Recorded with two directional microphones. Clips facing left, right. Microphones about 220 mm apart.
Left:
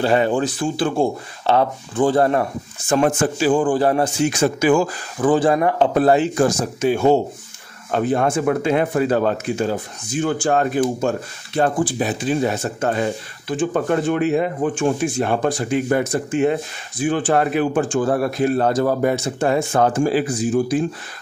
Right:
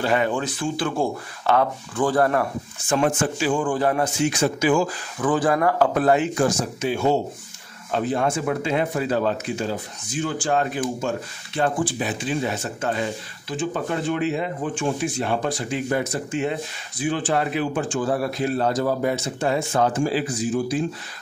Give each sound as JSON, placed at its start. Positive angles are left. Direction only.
{"t": 0.0, "sound": "speech", "side_deg": 30}
{"t": 2.9, "sound": "speech", "side_deg": 40}
{"t": 4.3, "sound": "speech", "side_deg": 50}
{"t": 5.2, "sound": "speech", "side_deg": 25}